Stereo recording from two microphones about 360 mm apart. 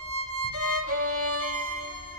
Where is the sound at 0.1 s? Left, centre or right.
Right.